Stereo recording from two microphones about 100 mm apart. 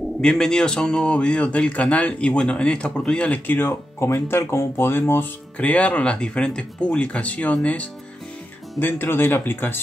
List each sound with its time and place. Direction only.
0.2 s a man's voice: 5° left (ahead or behind); by 9.8 s 20° left (ahead or behind)